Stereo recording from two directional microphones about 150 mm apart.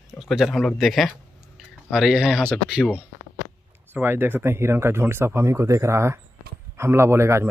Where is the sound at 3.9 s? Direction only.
15° right (ahead or behind).